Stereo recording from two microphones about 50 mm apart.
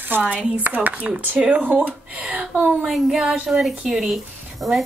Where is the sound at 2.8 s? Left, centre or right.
Centre.